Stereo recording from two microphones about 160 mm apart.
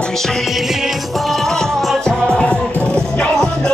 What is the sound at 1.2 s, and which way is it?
Music, centre (ahead or behind).